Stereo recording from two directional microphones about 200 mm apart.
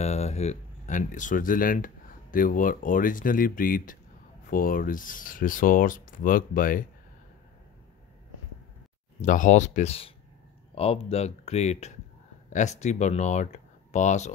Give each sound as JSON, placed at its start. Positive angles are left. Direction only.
{"t": 0.0, "sound": "speech", "side_deg": 35}
{"t": 9.2, "sound": "speech", "side_deg": 40}